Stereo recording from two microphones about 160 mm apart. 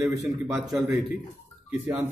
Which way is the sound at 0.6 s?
Centre (ahead or behind).